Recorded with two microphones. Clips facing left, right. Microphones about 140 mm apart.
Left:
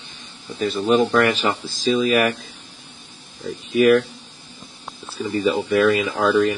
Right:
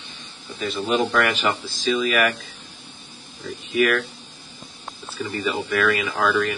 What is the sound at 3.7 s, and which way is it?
Speech, 35° left (ahead or behind).